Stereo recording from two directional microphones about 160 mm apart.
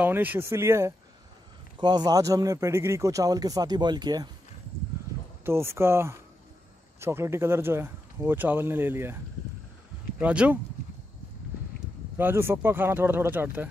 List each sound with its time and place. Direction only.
0.0 s speech: 10° right (ahead or behind); by 4.3 s 25° right (ahead or behind)
5.4 s speech: 15° right (ahead or behind)
12.2 s speech: 15° right (ahead or behind)